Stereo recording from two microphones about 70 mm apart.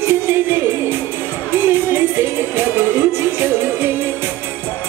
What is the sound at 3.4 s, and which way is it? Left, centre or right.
Music, right.